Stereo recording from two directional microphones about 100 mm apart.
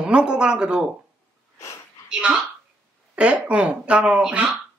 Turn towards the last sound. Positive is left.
turn(degrees=-10)  # may be behind; listen again after turning